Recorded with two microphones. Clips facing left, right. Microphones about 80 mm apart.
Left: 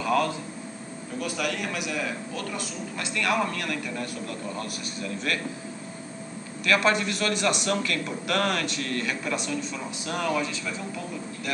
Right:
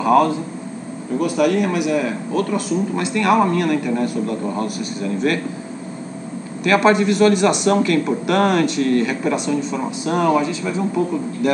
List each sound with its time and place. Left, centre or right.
0.0 s a man's voice: right
3.0 s speech: right
6.6 s speech: right